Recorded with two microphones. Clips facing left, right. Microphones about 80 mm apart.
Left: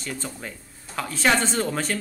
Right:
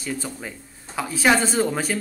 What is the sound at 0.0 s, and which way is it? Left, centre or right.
A man's voice, centre.